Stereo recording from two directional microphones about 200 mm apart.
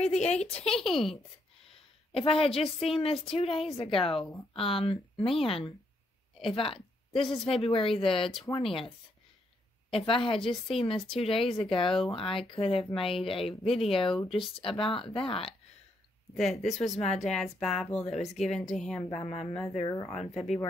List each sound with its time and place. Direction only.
0.0 s speech: 35° left (ahead or behind)
0.7 s speech: centre (ahead or behind)
1.7 s a woman's voice: 30° left (ahead or behind)
9.8 s speech: 25° left (ahead or behind)
16.3 s speech: centre (ahead or behind)
16.9 s speech: 35° left (ahead or behind)
17.2 s speech: centre (ahead or behind)
19.0 s speech: 25° left (ahead or behind)